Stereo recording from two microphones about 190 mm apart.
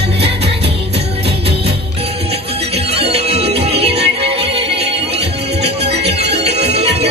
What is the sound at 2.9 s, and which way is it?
Music, 30° right (ahead or behind).